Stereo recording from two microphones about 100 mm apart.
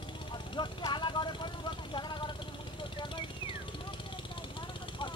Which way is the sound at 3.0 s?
55° left (ahead or behind).